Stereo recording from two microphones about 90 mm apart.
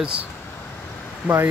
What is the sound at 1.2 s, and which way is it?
Speech, 20° right (ahead or behind).